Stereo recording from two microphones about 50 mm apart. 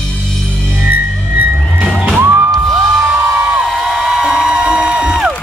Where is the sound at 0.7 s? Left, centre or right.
Right.